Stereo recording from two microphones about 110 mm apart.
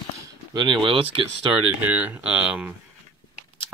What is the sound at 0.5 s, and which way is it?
Speech, 45° right (ahead or behind).